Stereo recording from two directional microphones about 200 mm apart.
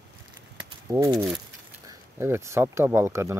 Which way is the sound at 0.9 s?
15° right (ahead or behind).